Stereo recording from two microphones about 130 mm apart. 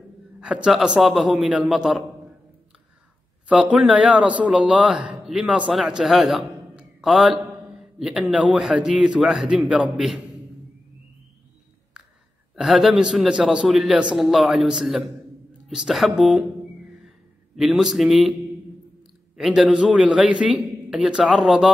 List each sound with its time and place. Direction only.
0.4 s a man's voice: 5° right (ahead or behind)
3.7 s a man's voice: 10° right (ahead or behind)
12.5 s a man's voice: centre (ahead or behind)
17.6 s a man's voice: 5° right (ahead or behind)
19.3 s a man's voice: 5° right (ahead or behind)